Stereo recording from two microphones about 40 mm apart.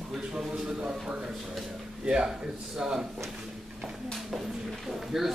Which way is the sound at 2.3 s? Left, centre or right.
Centre.